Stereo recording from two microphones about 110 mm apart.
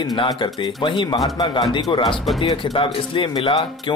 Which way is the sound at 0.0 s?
40° left (ahead or behind).